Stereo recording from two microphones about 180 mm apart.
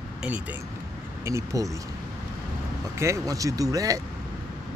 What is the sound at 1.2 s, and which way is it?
Speech, 15° right (ahead or behind).